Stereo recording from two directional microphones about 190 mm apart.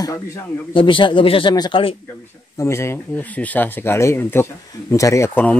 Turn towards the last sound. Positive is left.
turn(degrees=10)  # may be behind; listen again after turning